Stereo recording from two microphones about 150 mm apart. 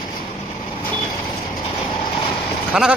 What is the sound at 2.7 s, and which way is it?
Sheep, 5° right (ahead or behind).